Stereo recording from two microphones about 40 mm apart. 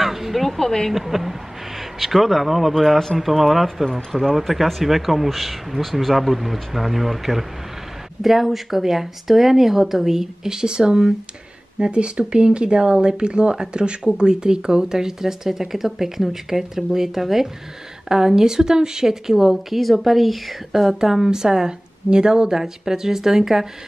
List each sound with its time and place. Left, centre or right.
0.0 s a sound: centre
0.6 s speech: centre
0.9 s a woman's voice: centre